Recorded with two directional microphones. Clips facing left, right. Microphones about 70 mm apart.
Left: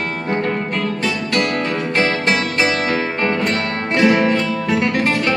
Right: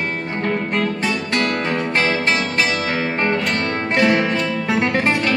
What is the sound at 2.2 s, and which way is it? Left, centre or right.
Music, left.